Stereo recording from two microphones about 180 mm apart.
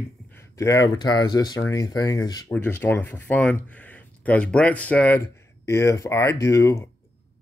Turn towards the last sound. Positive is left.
turn(degrees=15)  # may be behind; listen again after turning